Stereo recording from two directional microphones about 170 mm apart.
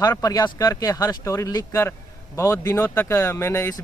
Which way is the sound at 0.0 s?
20° left (ahead or behind).